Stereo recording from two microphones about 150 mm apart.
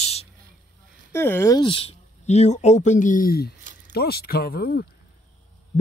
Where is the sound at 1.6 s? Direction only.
40° left (ahead or behind); by 3.5 s 80° left.